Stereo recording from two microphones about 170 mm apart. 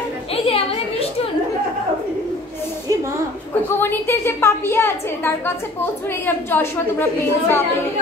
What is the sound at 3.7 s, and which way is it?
A woman's voice, 15° left (ahead or behind).